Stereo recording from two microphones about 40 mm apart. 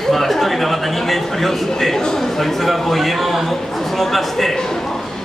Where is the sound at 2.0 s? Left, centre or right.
Centre.